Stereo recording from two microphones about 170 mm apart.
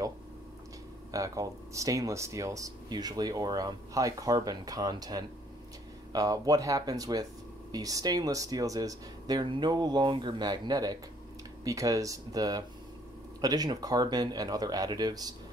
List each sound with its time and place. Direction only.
1.1 s speech: 20° right (ahead or behind)